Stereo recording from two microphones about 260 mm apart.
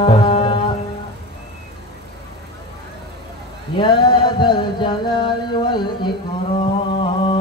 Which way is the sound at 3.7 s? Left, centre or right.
Centre.